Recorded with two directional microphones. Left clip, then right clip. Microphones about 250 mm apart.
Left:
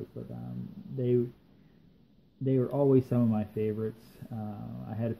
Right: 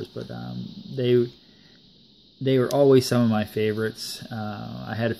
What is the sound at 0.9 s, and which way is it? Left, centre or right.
Speech, right.